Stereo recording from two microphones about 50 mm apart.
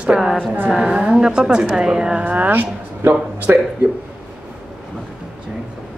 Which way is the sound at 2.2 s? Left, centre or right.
Right.